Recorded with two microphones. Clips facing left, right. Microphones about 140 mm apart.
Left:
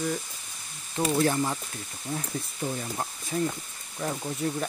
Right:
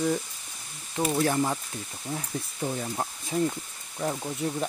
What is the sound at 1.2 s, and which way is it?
Speech, 10° right (ahead or behind).